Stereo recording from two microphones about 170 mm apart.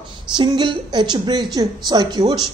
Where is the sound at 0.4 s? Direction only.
30° right (ahead or behind).